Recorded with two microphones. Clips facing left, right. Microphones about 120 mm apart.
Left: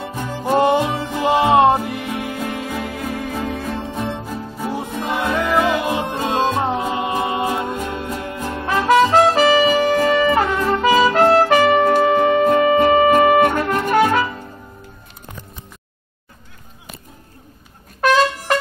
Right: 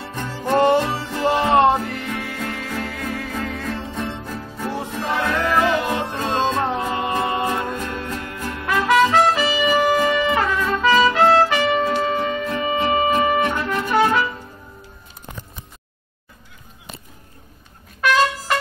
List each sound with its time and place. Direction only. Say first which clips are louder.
0.4 s music: left 1 dB; 15° left (ahead or behind); by 9.6 s 40° left (ahead or behind)
10.2 s wind instrument: left 3 dB; 35° left (ahead or behind)
10.7 s music: left 2 dB; 40° left (ahead or behind); by 12.5 s 60° left (ahead or behind)
12.5 s music: left 7 dB; 50° left (ahead or behind)